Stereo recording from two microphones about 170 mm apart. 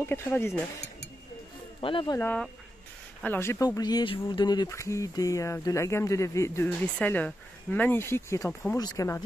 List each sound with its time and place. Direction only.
0.0 s speech: 10° left (ahead or behind)
1.8 s speech: 30° left (ahead or behind)
2.1 s speech: 10° left (ahead or behind)